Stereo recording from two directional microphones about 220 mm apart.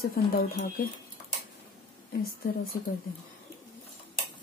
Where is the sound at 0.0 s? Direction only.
40° left (ahead or behind).